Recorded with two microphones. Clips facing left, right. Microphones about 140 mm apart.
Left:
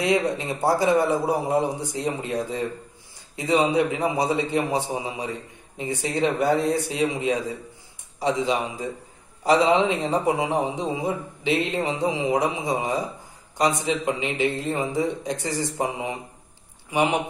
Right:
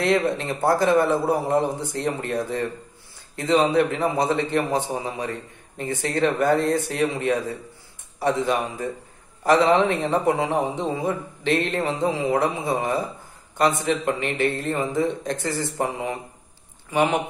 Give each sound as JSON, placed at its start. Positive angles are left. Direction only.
{"t": 0.2, "sound": "a man's voice", "side_deg": 15}